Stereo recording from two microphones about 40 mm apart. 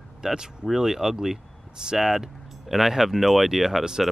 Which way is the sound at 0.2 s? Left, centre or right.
Centre.